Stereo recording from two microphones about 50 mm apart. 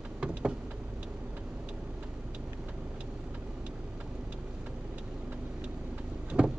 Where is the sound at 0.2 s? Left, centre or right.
Centre.